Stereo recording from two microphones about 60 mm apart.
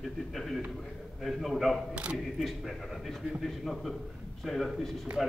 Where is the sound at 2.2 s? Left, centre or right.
Centre.